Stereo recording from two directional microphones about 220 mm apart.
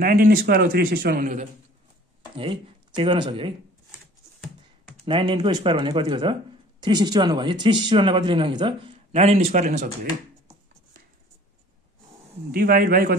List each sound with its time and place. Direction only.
0.0 s a man's voice: 40° right (ahead or behind)
2.3 s speech: 25° right (ahead or behind)
5.0 s speech: 20° right (ahead or behind)
12.4 s a man's voice: 40° right (ahead or behind)